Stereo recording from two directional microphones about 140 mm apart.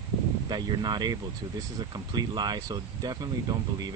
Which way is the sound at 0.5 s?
30° right (ahead or behind).